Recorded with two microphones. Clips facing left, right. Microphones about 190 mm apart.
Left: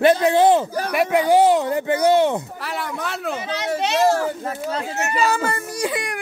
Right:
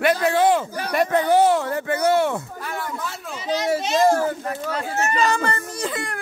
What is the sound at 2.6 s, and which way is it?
Speech, 70° left (ahead or behind).